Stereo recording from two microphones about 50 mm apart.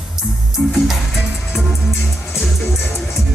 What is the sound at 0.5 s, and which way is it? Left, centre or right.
Music, centre.